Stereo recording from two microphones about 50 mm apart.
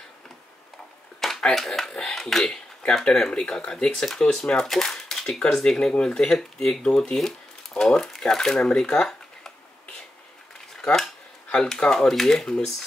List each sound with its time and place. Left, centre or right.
1.2 s speech: centre
10.8 s cutlery: centre
11.5 s speech: centre